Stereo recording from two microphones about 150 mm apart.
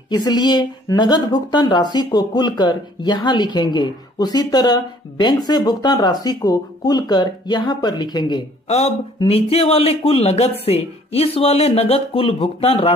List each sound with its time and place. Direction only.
0.1 s a woman's voice: 25° left (ahead or behind)
8.6 s speech: 45° left (ahead or behind)